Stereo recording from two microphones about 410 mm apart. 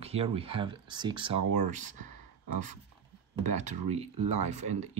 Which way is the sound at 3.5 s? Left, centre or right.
Centre.